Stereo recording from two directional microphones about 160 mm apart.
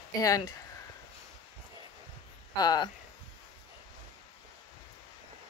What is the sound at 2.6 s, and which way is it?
Speech, 25° left (ahead or behind).